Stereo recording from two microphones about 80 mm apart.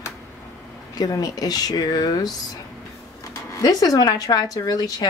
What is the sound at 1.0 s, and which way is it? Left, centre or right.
Speech, left.